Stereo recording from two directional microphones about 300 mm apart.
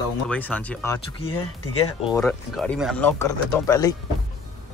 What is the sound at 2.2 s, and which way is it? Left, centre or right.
Speech, centre.